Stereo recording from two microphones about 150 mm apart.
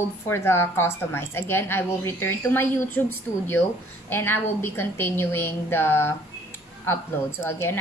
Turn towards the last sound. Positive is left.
turn(degrees=15)  # may be behind; listen again after turning